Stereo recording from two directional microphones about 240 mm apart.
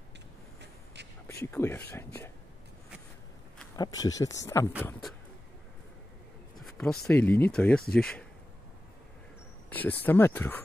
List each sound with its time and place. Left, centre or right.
1.2 s speech: centre
3.7 s speech: centre
6.6 s speech: centre
9.7 s speech: centre